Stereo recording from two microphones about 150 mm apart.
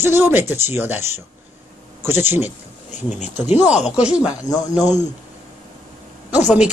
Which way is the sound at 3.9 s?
5° right (ahead or behind).